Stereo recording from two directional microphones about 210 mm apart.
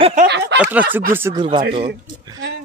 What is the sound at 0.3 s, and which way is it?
Snicker, 55° right (ahead or behind).